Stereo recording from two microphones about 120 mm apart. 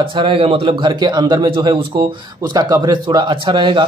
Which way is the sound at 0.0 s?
45° right (ahead or behind).